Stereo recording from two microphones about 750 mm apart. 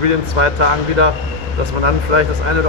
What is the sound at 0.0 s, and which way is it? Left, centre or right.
Speech, right.